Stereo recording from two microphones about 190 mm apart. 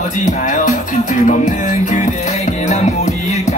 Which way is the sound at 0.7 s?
40° left (ahead or behind).